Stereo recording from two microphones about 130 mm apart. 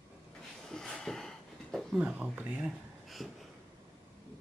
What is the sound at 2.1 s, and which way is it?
Speech, 10° right (ahead or behind).